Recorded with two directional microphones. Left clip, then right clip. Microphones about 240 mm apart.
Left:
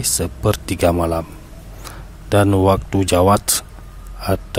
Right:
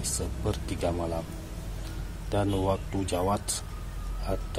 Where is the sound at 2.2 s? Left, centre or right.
Left.